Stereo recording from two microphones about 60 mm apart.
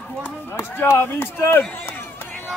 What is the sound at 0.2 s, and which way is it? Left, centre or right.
Speech, left.